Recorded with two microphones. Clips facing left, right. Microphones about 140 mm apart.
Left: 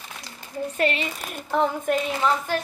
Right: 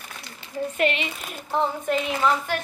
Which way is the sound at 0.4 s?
35° left (ahead or behind).